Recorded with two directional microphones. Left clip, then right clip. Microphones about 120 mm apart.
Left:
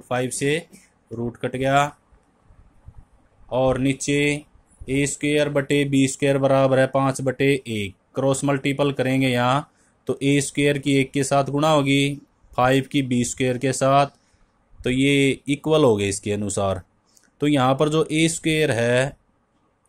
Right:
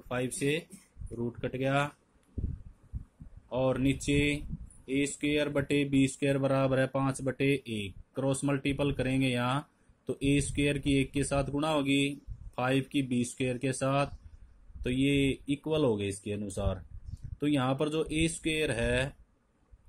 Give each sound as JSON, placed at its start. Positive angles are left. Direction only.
{"t": 0.1, "sound": "speech", "side_deg": 10}
{"t": 3.4, "sound": "speech", "side_deg": 15}